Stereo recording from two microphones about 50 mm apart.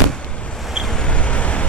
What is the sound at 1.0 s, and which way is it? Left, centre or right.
Vehicle, left.